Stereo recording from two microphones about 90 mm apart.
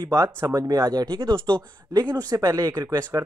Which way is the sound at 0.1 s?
35° right (ahead or behind).